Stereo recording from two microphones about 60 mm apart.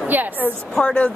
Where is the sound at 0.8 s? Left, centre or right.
Centre.